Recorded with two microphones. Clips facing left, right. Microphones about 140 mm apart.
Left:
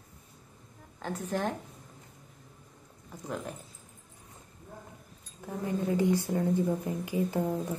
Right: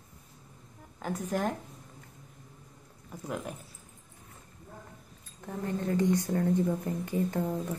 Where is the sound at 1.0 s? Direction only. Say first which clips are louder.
Right 1 dB; 10° right (ahead or behind).